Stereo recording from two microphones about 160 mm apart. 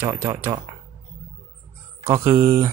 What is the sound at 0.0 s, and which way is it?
Speech, 20° right (ahead or behind).